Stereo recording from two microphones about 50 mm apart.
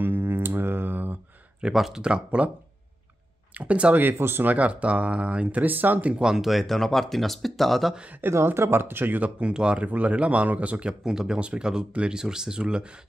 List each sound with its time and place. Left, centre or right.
0.0 s a sound: right
1.6 s speech: centre
2.0 s speech: centre
3.5 s speech: right
4.1 s speech: right
4.5 s speech: right
6.1 s speech: centre
8.2 s speech: right
9.4 s speech: centre
10.9 s speech: centre